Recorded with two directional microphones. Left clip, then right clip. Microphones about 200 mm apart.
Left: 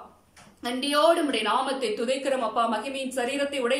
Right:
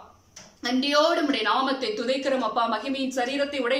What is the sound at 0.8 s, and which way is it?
A woman's voice, 5° left (ahead or behind).